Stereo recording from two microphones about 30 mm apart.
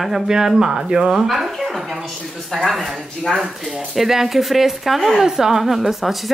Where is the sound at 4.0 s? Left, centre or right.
Centre.